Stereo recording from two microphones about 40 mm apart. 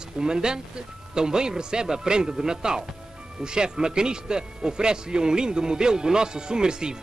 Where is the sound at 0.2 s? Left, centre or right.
Centre.